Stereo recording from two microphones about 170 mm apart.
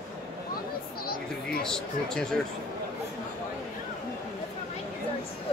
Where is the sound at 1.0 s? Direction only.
60° left (ahead or behind).